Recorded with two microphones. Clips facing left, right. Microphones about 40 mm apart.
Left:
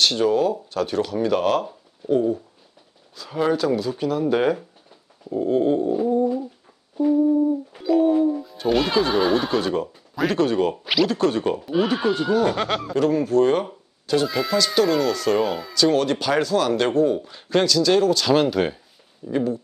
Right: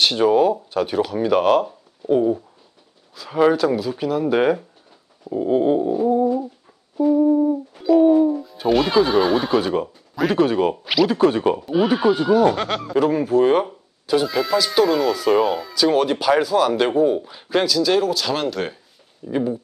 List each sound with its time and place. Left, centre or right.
0.0 s speech: centre
7.2 s a sound: right
7.8 s speech: centre
11.1 s speech: centre
11.6 s speech: centre
12.9 s speech: centre
19.2 s speech: centre